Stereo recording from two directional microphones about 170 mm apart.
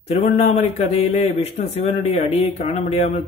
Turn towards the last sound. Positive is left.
turn(degrees=40)  # may be behind; listen again after turning